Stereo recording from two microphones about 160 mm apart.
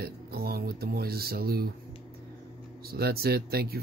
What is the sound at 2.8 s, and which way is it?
Speech, 75° right (ahead or behind).